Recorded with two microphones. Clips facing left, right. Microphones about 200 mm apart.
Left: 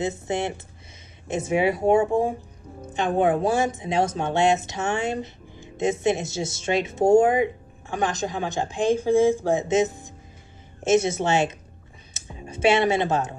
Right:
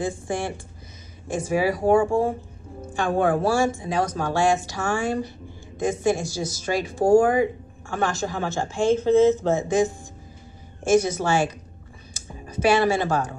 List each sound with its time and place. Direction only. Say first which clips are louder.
0.0 s speech: left 1 dB; 20° left (ahead or behind)
12.1 s computer keyboard: left 1 dB; 25° left (ahead or behind)